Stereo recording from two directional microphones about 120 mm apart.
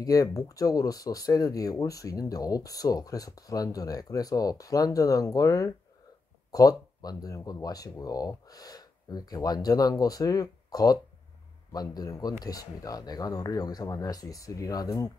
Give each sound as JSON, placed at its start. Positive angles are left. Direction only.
{"t": 0.0, "sound": "speech", "side_deg": 30}